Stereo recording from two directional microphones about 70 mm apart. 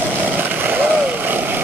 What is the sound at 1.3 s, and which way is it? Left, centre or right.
Vehicle, right.